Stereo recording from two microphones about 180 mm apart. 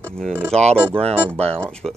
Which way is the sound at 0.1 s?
5° left (ahead or behind).